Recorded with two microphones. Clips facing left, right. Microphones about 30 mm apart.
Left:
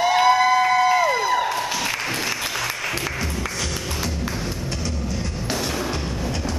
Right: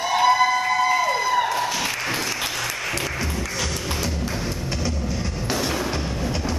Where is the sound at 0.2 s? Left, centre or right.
Centre.